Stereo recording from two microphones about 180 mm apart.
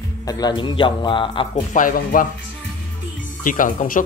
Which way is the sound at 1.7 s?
50° left (ahead or behind).